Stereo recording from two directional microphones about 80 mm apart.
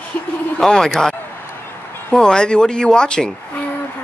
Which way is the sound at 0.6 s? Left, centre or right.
Centre.